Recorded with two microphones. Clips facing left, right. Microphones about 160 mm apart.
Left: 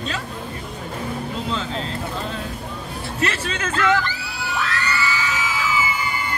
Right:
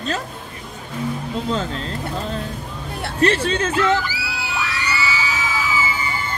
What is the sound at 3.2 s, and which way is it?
Speech, 35° right (ahead or behind).